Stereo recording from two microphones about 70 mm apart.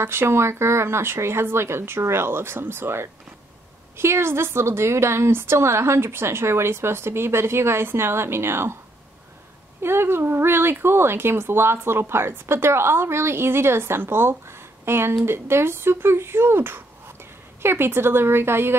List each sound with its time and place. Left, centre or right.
0.0 s speech: right
9.8 s speech: right